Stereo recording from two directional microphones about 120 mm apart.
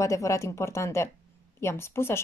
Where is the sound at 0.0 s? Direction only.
25° left (ahead or behind).